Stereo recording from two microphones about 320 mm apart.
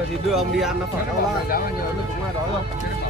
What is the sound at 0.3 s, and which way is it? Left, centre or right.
Speech, centre.